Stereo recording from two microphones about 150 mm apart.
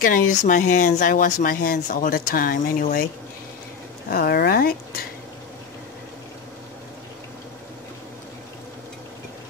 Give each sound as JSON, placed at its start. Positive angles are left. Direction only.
{"t": 0.0, "sound": "speech", "side_deg": 60}
{"t": 4.1, "sound": "speech", "side_deg": 85}